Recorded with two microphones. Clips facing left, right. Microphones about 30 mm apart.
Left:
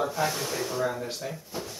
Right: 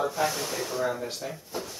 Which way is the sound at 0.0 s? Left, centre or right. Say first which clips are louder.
Even; centre.